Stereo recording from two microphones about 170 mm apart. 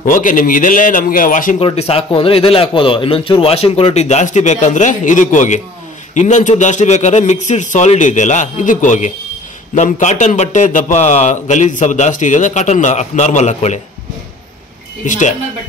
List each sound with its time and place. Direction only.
0.0 s a man's voice: 50° left (ahead or behind)
1.6 s a man's voice: 35° left (ahead or behind)
15.0 s a man's voice: 45° left (ahead or behind)